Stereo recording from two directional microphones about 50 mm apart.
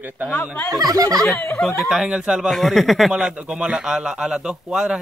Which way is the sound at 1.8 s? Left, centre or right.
Centre.